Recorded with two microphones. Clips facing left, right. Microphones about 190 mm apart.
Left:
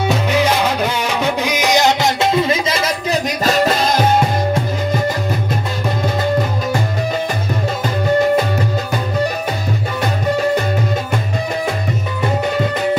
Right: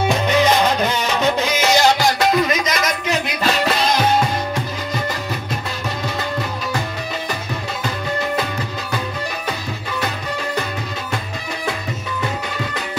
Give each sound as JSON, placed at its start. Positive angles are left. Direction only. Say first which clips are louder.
{"t": 0.1, "sound": "music", "louder": "even", "side_deg": 10}